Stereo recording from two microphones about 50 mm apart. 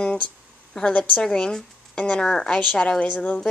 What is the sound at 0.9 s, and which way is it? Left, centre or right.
A woman's voice, left.